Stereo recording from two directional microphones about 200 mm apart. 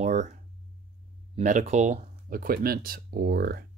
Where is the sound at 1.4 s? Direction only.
40° right (ahead or behind).